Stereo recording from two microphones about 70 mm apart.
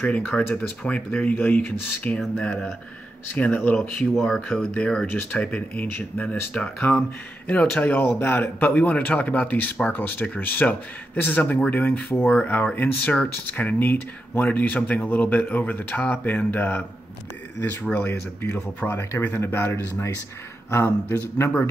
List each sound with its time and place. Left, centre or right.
0.0 s speech: left
0.6 s speech: centre
2.0 s speech: centre
3.7 s speech: centre
5.0 s speech: left
17.9 s speech: left
18.9 s speech: left